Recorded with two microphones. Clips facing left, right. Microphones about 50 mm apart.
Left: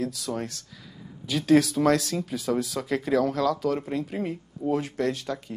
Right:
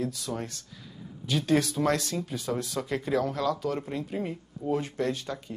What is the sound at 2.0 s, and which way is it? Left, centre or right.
Speech, left.